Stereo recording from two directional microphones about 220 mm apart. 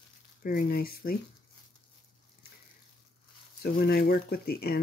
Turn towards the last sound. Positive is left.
turn(degrees=45)  # may be behind; listen again after turning